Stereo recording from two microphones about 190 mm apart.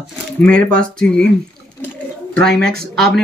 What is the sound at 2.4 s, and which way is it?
Speech, 5° left (ahead or behind).